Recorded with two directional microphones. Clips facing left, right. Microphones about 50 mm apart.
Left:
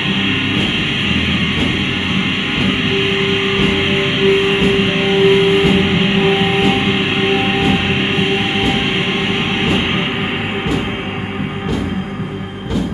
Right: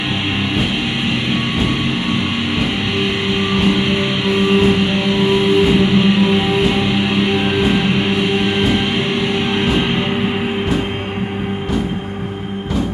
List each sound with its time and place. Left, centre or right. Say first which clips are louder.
2.9 s music: left 3 dB; left